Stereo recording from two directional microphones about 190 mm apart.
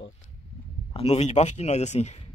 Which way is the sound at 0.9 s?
35° left (ahead or behind).